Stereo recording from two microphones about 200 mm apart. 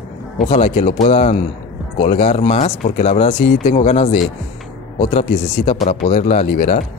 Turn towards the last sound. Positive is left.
turn(degrees=35)  # may be behind; listen again after turning